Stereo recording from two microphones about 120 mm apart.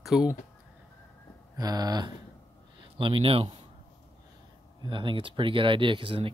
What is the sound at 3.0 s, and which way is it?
Speech, 45° right (ahead or behind).